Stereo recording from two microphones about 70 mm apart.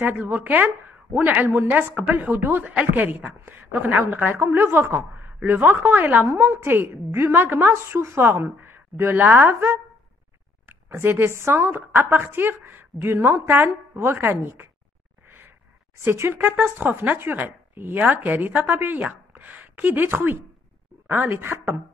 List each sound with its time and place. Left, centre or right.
0.0 s speech: right
6.2 s a woman's voice: right
15.2 s a sound: right
16.0 s a woman's voice: right